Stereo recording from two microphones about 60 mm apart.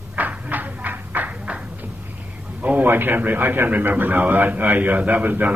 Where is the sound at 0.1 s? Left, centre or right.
Right.